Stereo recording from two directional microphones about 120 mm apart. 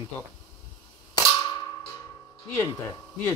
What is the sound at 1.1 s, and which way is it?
Cap gun, 30° left (ahead or behind).